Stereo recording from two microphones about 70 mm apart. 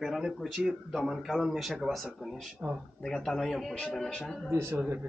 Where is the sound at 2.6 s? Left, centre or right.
Centre.